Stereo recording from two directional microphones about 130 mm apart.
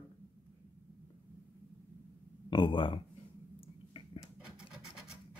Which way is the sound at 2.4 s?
35° left (ahead or behind).